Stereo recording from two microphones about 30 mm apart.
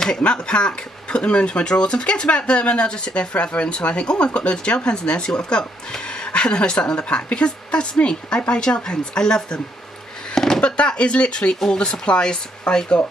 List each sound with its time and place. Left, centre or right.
0.2 s speech: left
10.3 s a sound: centre
10.6 s speech: left
11.6 s speech: left